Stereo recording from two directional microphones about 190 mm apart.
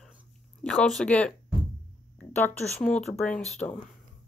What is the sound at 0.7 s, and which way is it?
A woman's voice, centre (ahead or behind).